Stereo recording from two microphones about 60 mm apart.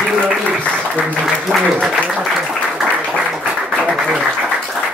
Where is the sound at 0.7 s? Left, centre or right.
Right.